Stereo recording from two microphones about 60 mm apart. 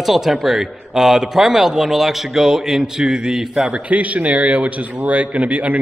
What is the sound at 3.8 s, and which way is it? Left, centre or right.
A man's voice, right.